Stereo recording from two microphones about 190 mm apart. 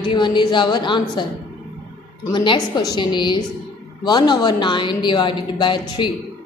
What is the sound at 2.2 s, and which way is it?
A woman's voice, 25° left (ahead or behind).